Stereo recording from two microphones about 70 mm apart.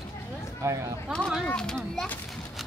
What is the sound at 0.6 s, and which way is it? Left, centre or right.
Speech, right.